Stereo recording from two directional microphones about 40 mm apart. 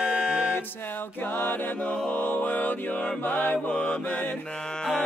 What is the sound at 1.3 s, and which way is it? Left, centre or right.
Mantra, left.